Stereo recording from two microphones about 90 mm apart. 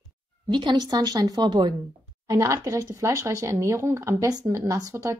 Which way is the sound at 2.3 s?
35° right (ahead or behind).